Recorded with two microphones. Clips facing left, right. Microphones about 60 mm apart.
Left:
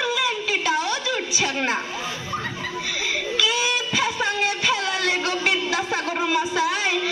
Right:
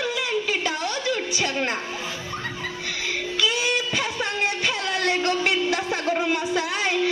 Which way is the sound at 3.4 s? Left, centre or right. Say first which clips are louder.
Even; centre.